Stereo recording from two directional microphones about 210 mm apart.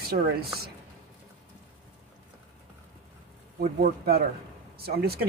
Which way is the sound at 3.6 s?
45° right (ahead or behind).